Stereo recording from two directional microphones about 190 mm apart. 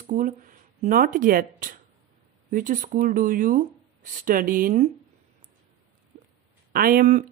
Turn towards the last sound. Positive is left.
turn(degrees=-45)  # may be behind; listen again after turning